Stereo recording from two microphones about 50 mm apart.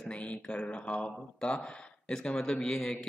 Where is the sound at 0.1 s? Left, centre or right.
Left.